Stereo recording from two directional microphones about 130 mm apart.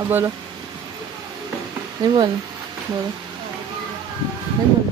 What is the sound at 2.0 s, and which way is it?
Speech, 35° right (ahead or behind).